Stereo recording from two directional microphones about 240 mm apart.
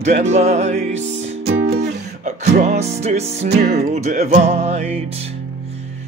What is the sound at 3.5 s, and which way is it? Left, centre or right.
Music, right.